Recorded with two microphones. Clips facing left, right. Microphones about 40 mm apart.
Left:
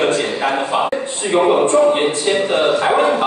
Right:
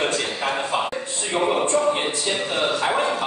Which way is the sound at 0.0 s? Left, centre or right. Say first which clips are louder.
Left 7 dB; left.